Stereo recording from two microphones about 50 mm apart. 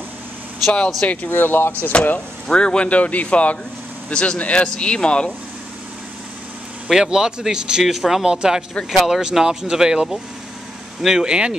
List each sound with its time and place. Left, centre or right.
1.0 s speech: left
2.4 s speech: centre
6.9 s speech: centre
8.9 s speech: centre